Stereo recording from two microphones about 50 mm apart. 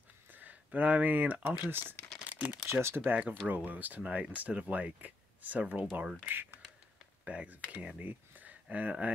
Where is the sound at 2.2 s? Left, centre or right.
Right.